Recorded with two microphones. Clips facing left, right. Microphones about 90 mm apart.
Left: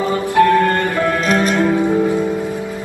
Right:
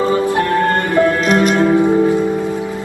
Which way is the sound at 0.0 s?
30° right (ahead or behind).